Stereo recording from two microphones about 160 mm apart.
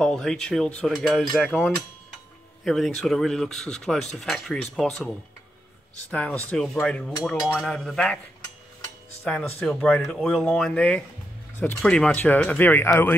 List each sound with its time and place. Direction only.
0.0 s speech: 5° left (ahead or behind)
9.2 s speech: 5° left (ahead or behind)